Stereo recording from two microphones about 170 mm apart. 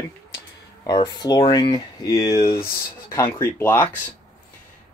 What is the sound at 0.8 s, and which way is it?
Speech, 25° left (ahead or behind).